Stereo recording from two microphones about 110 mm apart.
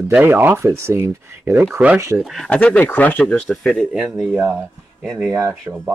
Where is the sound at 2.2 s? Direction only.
Centre (ahead or behind).